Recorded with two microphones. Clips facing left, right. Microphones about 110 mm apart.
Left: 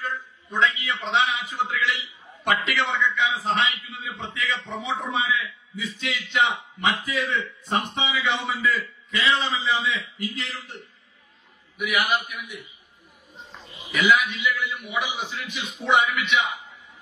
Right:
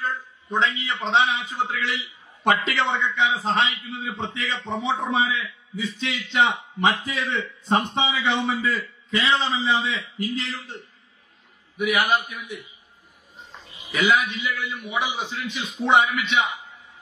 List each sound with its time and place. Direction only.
0.0 s a man's voice: 30° right (ahead or behind)
13.9 s a man's voice: 30° right (ahead or behind)